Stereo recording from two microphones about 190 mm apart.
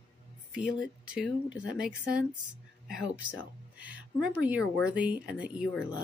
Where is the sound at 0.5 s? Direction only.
5° right (ahead or behind).